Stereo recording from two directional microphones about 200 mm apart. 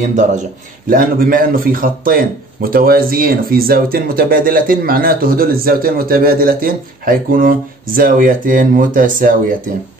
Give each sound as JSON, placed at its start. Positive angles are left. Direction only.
{"t": 0.0, "sound": "speech", "side_deg": -40}